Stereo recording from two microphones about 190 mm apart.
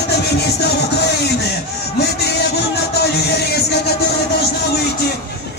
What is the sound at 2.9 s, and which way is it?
Music, 60° left (ahead or behind).